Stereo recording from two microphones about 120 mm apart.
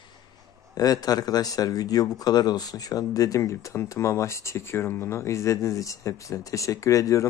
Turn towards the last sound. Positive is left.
turn(degrees=25)  # may be behind; listen again after turning